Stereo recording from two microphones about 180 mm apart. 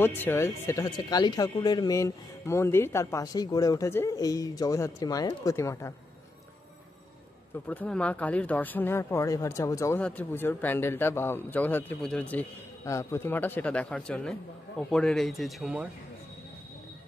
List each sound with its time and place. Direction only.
0.0 s speech: 10° left (ahead or behind)
7.6 s speech: 10° left (ahead or behind)